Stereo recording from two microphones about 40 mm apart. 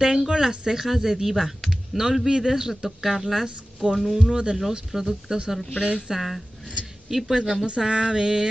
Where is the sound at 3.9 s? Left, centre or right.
Centre.